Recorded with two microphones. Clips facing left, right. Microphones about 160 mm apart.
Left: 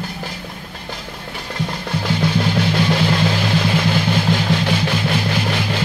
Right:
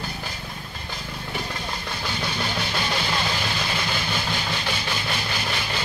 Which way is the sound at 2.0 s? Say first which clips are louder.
Left 11 dB; 90° left.